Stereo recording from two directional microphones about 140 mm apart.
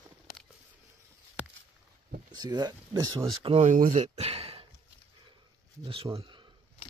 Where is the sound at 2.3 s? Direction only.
30° right (ahead or behind).